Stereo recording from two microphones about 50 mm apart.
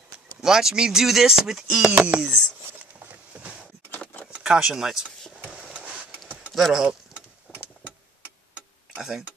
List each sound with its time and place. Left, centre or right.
0.4 s speech: centre
2.0 s speech: right
3.0 s a sound: right
4.4 s speech: centre
5.7 s printer: right
6.5 s speech: centre
7.5 s vehicle: right